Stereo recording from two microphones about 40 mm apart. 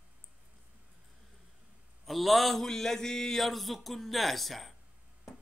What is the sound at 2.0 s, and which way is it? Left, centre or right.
Speech, centre.